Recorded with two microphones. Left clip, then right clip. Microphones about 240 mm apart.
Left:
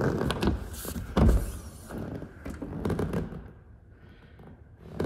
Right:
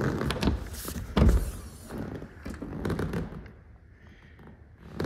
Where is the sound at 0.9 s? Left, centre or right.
Centre.